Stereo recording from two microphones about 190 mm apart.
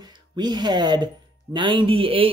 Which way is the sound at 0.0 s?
20° right (ahead or behind).